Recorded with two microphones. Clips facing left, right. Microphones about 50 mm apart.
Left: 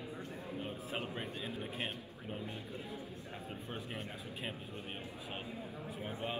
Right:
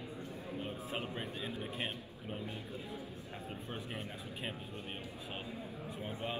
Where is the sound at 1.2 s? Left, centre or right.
Centre.